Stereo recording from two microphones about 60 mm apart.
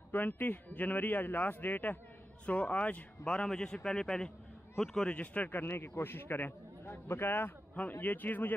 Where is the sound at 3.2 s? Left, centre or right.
Centre.